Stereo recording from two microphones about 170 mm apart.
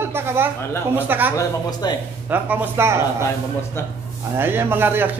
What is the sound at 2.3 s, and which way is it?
Speech, 10° right (ahead or behind).